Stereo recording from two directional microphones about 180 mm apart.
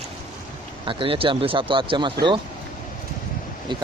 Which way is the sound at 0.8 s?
30° right (ahead or behind).